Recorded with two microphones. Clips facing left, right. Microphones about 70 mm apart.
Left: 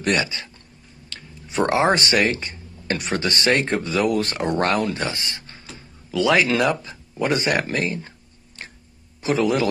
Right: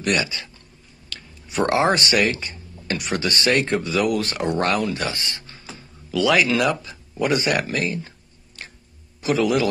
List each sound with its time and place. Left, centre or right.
0.0 s speech: left
9.2 s a man's voice: left